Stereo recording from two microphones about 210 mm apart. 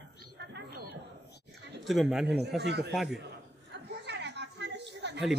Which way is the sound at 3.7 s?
55° right (ahead or behind).